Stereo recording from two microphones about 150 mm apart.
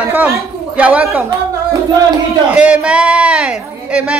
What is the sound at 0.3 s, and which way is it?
Speech, 10° right (ahead or behind).